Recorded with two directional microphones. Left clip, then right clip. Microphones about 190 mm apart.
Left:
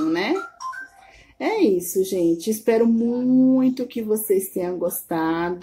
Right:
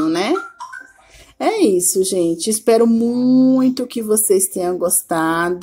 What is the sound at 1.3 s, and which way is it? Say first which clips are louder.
Speech: right 5 dB; 20° right (ahead or behind).